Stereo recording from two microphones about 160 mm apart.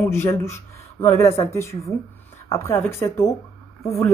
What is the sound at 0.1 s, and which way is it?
Speech, 15° left (ahead or behind).